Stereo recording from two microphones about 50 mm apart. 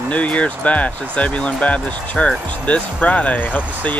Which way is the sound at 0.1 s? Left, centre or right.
Left.